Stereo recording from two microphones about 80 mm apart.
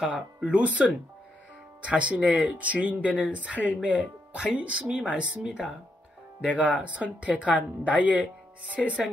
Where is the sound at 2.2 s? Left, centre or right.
Centre.